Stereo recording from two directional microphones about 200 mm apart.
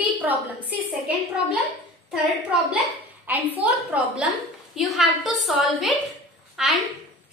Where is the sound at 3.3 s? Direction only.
10° right (ahead or behind).